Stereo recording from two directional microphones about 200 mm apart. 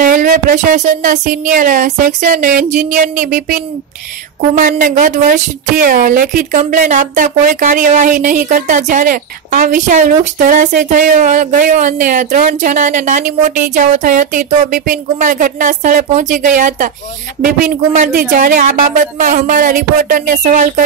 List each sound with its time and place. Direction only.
0.0 s speech: 40° right (ahead or behind)